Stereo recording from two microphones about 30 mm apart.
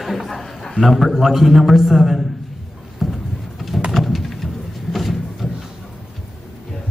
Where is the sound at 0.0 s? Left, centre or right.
Centre.